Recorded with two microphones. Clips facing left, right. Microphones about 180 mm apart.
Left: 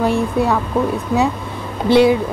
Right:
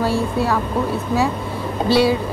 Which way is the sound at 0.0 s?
20° left (ahead or behind).